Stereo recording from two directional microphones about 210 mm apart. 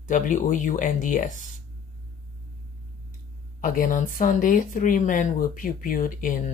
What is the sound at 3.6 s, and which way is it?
Speech, 40° left (ahead or behind).